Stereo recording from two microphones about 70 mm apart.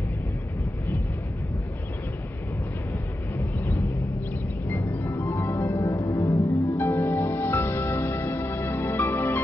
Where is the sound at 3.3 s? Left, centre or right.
Left.